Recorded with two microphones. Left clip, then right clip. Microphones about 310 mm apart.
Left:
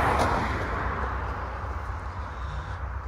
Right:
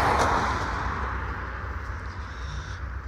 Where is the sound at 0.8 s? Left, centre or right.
Centre.